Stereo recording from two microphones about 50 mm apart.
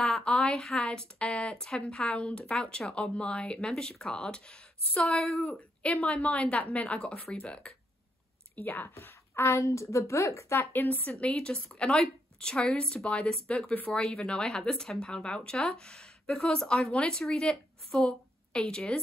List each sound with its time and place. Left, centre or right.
0.2 s speech: centre
5.2 s speech: centre
5.5 s a woman's voice: left
8.5 s speech: left
8.9 s a woman's voice: left
10.6 s speech: left
11.1 s a woman's voice: left
11.3 s a woman's voice: centre